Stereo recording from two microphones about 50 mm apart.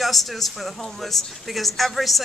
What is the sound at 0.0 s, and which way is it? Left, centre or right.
A man's voice, centre.